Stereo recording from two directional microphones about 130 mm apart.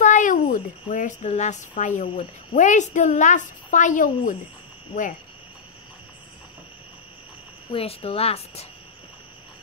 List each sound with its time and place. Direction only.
0.0 s a woman's voice: 75° left (ahead or behind)
7.7 s speech: 50° left (ahead or behind)